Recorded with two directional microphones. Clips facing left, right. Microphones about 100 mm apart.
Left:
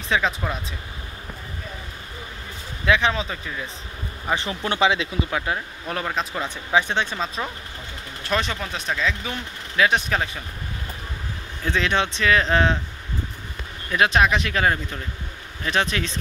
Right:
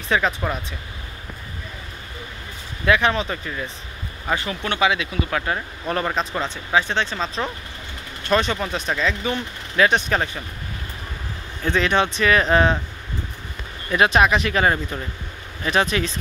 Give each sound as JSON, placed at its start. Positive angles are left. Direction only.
{"t": 0.1, "sound": "speech", "side_deg": 0}
{"t": 2.8, "sound": "speech", "side_deg": 5}
{"t": 4.4, "sound": "speech", "side_deg": 25}
{"t": 5.3, "sound": "speech", "side_deg": 5}
{"t": 6.4, "sound": "speech", "side_deg": 15}
{"t": 11.6, "sound": "speech", "side_deg": 0}
{"t": 13.9, "sound": "speech", "side_deg": -5}